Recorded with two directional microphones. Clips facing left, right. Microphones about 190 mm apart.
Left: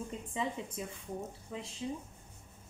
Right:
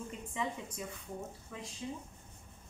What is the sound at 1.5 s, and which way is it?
Speech, 20° left (ahead or behind).